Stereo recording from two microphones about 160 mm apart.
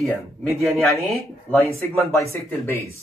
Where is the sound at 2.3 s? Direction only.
15° left (ahead or behind).